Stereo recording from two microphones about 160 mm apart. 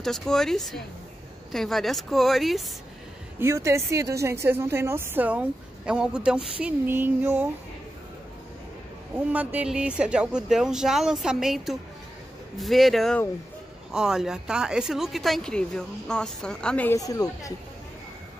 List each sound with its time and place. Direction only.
0.0 s speech: 5° left (ahead or behind)
3.3 s a woman's voice: 20° right (ahead or behind)
9.3 s speech: 10° right (ahead or behind); by 16.9 s 5° left (ahead or behind)
16.9 s a woman's voice: 20° left (ahead or behind)